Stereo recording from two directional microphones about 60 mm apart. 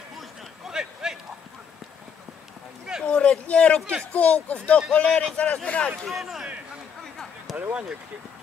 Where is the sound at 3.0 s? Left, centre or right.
Centre.